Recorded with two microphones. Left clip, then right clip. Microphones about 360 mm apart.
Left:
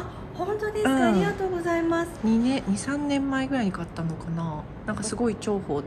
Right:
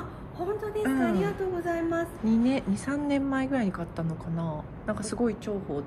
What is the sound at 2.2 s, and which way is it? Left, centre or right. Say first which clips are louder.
A woman's voice: left 2 dB; centre.